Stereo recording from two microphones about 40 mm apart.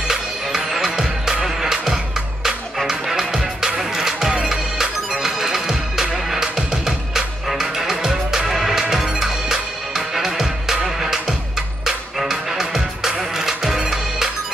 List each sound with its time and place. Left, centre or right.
0.1 s music: centre